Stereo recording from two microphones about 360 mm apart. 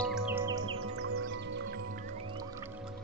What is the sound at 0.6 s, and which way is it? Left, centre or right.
Music, right.